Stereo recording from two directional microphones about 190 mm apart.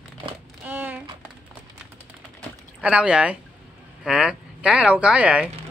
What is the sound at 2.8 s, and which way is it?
Speech, 5° right (ahead or behind).